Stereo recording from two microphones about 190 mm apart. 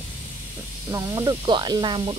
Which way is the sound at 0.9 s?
20° right (ahead or behind).